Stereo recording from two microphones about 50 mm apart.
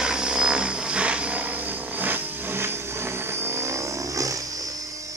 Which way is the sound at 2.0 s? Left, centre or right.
Right.